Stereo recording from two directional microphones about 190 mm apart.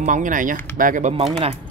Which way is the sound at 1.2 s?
30° right (ahead or behind).